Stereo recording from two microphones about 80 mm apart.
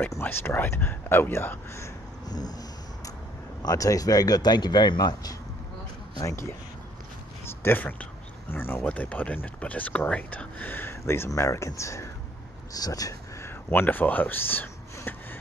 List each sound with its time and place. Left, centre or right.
0.0 s speech: left
2.2 s a sound: left
3.6 s speech: left
6.1 s speech: left
7.4 s speech: left
12.7 s speech: left
13.4 s speech: left